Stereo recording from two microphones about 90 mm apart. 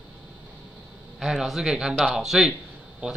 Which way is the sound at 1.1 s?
5° right (ahead or behind).